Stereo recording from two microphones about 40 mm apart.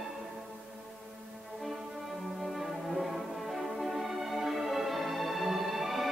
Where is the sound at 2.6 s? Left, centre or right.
Centre.